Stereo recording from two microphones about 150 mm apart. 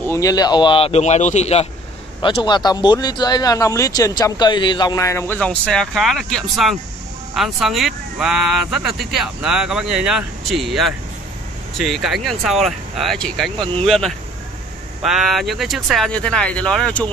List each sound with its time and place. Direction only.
0.0 s speech: 20° left (ahead or behind); by 1.7 s 45° left (ahead or behind)
2.2 s speech: 30° left (ahead or behind); by 17.1 s 5° left (ahead or behind)